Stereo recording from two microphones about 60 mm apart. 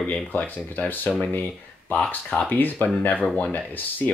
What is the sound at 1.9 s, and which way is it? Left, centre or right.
Speech, centre.